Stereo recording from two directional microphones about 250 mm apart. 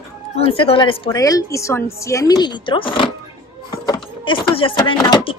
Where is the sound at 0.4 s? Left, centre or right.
Left.